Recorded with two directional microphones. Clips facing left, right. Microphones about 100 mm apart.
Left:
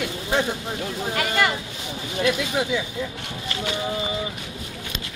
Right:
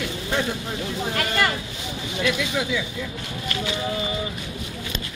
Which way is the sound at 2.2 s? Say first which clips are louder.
Left 2 dB; 35° left (ahead or behind).